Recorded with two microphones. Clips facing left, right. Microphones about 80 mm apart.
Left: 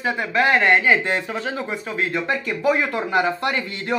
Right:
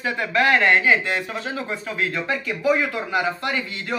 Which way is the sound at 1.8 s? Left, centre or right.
Left.